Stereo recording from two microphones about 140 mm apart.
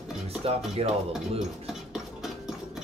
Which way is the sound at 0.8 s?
45° right (ahead or behind).